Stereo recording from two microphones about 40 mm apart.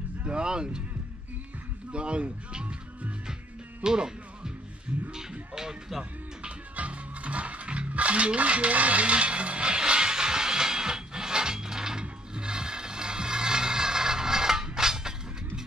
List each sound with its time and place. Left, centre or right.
0.2 s a sound: right
1.9 s speech: right
3.8 s speech: centre
5.5 s music: centre
6.8 s cutlery: right; by 15.6 s centre